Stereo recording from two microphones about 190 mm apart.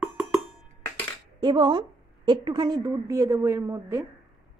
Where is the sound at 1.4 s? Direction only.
25° right (ahead or behind).